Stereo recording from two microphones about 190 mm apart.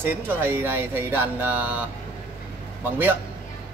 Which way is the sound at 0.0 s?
10° right (ahead or behind).